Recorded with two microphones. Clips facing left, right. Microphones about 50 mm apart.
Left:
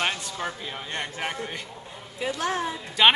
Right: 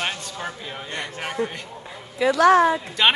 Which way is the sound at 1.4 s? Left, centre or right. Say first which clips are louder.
Right 7 dB; right.